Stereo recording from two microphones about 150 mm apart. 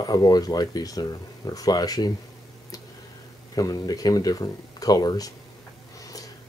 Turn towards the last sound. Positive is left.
turn(degrees=25)  # may be behind; listen again after turning